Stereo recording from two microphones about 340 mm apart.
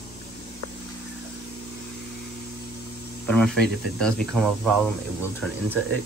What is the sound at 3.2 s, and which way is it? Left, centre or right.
Speech, centre.